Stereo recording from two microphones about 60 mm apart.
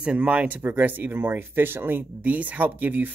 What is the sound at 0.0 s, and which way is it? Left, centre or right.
Speech, right.